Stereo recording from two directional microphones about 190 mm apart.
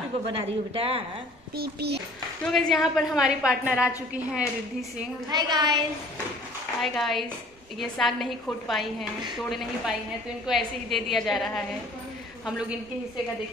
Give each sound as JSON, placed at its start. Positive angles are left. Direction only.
{"t": 0.3, "sound": "speech", "side_deg": -30}
{"t": 1.6, "sound": "a child's voice", "side_deg": -60}
{"t": 2.4, "sound": "a woman's voice", "side_deg": 0}
{"t": 5.3, "sound": "a woman's voice", "side_deg": -20}
{"t": 6.8, "sound": "a woman's voice", "side_deg": 0}
{"t": 10.4, "sound": "a woman's voice", "side_deg": 0}